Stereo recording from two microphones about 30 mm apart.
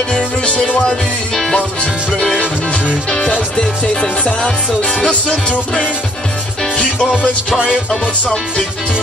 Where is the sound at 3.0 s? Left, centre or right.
Left.